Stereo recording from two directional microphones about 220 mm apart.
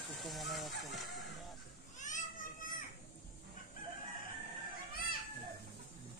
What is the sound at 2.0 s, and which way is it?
Baby cry, 35° left (ahead or behind).